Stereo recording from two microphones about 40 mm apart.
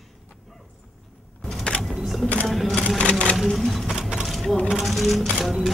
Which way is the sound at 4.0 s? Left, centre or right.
Centre.